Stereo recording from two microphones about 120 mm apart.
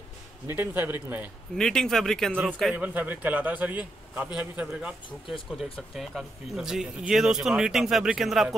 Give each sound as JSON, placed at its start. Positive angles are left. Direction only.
{"t": 0.5, "sound": "a man's voice", "side_deg": -15}
{"t": 1.6, "sound": "a man's voice", "side_deg": 5}
{"t": 2.7, "sound": "a man's voice", "side_deg": -15}